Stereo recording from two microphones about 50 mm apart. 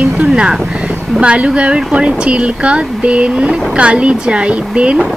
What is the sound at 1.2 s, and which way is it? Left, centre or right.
Speech, right.